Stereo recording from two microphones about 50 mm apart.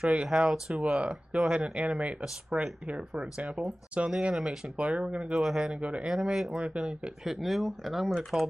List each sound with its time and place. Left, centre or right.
0.0 s speech: right
0.3 s speech: centre
0.8 s speech: right
2.2 s speech: centre
5.4 s speech: centre
5.8 s speech: right
6.1 s speech: centre
7.2 s speech: centre